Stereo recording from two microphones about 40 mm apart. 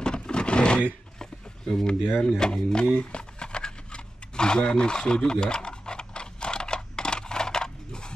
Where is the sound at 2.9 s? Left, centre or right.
Left.